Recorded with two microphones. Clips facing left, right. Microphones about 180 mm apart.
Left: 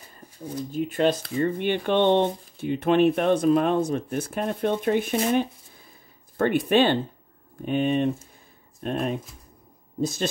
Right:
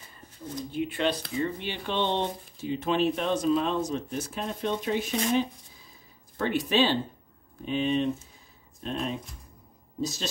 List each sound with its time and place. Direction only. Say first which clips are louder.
0.7 s speech: left 5 dB; 45° left (ahead or behind)
1.3 s speech: left 7 dB; 55° left (ahead or behind)
6.3 s speech: left 5 dB; 55° left (ahead or behind)